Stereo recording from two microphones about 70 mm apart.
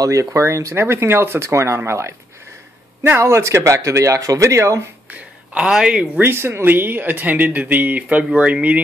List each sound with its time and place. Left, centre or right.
0.0 s speech: right
5.6 s speech: centre
6.1 s speech: right